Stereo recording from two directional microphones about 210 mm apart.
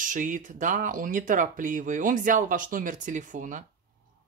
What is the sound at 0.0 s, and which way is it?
Speech, 40° right (ahead or behind).